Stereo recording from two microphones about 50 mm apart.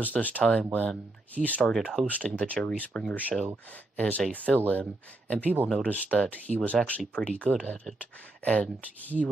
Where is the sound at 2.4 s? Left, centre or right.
Left.